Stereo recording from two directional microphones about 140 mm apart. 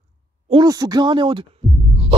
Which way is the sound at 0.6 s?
25° right (ahead or behind).